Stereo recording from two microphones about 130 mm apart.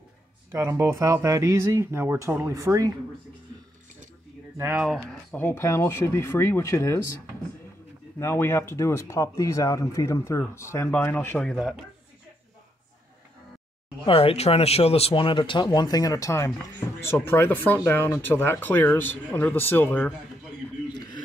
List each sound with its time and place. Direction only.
0.5 s speech: 20° right (ahead or behind)
4.6 s speech: 15° right (ahead or behind)
5.3 s speech: 15° left (ahead or behind)
8.2 s speech: 20° left (ahead or behind); by 11.8 s centre (ahead or behind)
14.0 s speech: 45° left (ahead or behind); by 20.2 s 15° left (ahead or behind)